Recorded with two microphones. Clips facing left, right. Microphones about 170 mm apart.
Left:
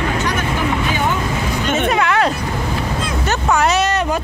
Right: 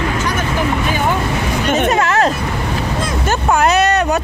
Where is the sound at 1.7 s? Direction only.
40° right (ahead or behind).